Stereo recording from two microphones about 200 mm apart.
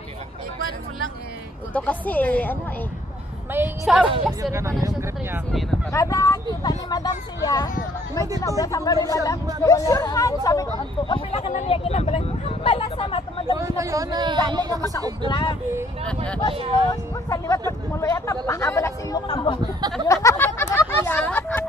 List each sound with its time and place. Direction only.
1.7 s speech: 5° left (ahead or behind)
3.5 s a woman's voice: 5° right (ahead or behind)
4.1 s speech: 15° right (ahead or behind)
5.5 s a woman's voice: centre (ahead or behind)
5.9 s speech: 15° left (ahead or behind)
13.6 s speech: 15° right (ahead or behind)
15.2 s speech: 20° left (ahead or behind)
16.9 s speech: 15° left (ahead or behind)
20.1 s a sound: 15° left (ahead or behind)